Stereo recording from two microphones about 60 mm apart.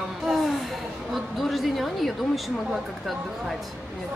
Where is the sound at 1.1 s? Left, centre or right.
Centre.